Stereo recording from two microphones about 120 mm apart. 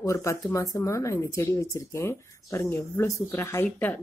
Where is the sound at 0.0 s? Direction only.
25° left (ahead or behind).